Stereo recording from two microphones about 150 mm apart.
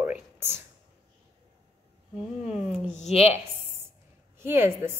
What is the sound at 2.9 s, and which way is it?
Speech, 50° left (ahead or behind).